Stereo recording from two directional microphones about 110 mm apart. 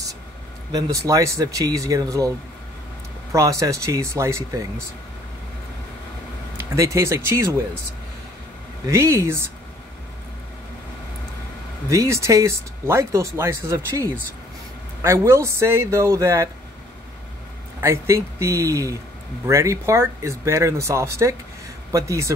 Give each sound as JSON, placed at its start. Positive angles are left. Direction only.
{"t": 0.7, "sound": "speech", "side_deg": -35}
{"t": 6.7, "sound": "speech", "side_deg": -25}
{"t": 8.8, "sound": "speech", "side_deg": -25}
{"t": 11.9, "sound": "speech", "side_deg": -30}
{"t": 17.7, "sound": "speech", "side_deg": -25}